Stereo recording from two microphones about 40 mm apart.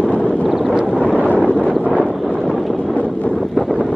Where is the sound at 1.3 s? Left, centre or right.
Left.